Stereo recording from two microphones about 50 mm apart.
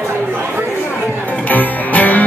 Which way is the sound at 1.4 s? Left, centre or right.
Left.